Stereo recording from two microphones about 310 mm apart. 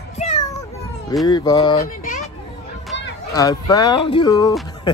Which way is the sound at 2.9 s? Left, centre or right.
Left.